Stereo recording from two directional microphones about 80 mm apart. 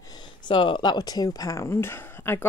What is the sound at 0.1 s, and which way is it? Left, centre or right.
Speech, left.